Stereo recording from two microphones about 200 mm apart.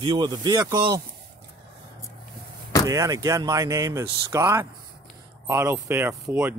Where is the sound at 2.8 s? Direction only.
15° right (ahead or behind).